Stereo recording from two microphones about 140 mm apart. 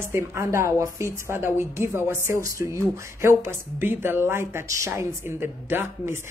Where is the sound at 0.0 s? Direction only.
20° right (ahead or behind).